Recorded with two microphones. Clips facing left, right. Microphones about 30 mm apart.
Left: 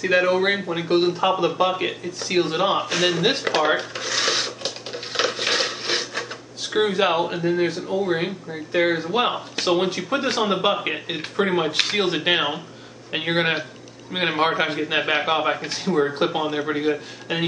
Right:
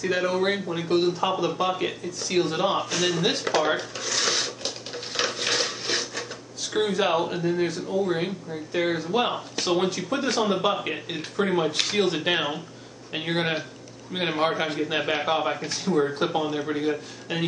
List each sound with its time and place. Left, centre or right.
0.0 s a man's voice: left